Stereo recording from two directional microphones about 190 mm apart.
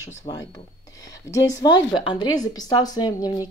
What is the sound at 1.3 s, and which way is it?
Speech, 20° left (ahead or behind).